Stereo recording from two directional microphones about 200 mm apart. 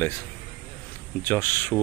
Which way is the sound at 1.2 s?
10° left (ahead or behind).